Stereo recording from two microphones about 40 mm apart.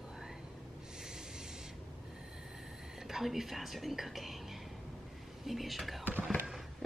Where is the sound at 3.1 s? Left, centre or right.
Centre.